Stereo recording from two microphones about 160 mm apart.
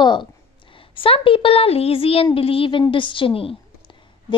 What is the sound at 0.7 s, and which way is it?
A woman's voice, 35° left (ahead or behind).